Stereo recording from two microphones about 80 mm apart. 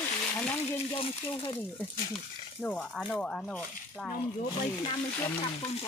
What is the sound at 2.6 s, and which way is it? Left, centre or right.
Speech, centre.